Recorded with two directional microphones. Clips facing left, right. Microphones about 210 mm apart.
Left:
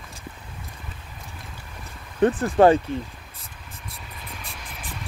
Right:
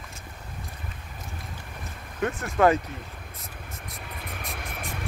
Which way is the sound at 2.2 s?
30° left (ahead or behind).